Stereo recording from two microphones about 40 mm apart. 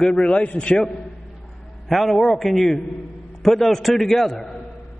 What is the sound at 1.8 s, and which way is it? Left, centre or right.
A man's voice, centre.